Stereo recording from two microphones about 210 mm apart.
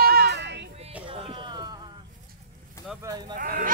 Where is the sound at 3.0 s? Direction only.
20° right (ahead or behind).